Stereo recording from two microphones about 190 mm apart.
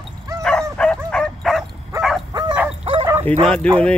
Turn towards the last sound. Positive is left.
turn(degrees=5)  # may be behind; listen again after turning